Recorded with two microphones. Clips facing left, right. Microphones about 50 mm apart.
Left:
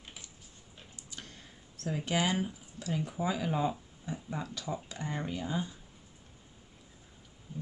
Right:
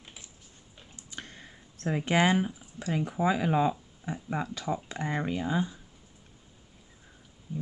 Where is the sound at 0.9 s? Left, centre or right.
Right.